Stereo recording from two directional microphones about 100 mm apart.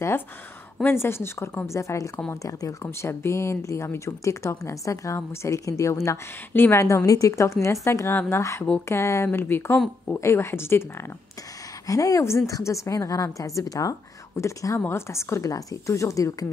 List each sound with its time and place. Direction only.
0.8 s a woman's voice: 25° left (ahead or behind)